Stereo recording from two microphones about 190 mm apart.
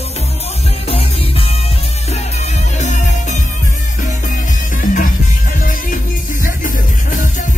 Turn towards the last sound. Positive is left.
turn(degrees=45)  # may be behind; listen again after turning